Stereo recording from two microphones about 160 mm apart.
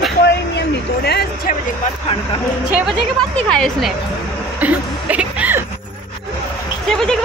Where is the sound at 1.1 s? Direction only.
85° left.